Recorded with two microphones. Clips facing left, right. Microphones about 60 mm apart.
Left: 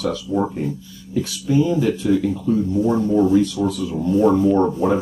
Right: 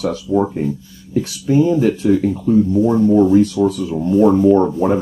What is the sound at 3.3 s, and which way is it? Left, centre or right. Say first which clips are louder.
Speech: right 4 dB; right.